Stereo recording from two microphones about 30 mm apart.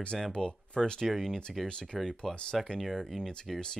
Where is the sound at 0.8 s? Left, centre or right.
Centre.